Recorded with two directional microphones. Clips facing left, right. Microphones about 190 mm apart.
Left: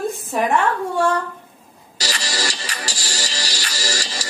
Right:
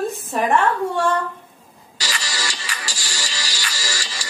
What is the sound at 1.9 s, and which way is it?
Music, 40° left (ahead or behind).